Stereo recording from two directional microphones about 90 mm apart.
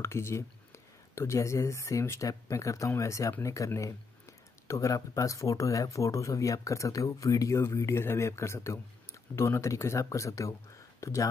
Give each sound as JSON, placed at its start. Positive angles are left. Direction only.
{"t": 0.0, "sound": "speech", "side_deg": 30}